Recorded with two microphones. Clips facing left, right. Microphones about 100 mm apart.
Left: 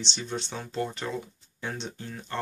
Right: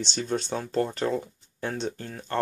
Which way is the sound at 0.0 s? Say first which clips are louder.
Right 5 dB; 45° right (ahead or behind).